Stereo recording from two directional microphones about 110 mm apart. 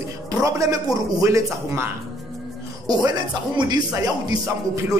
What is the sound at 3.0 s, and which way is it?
Speech, 40° right (ahead or behind).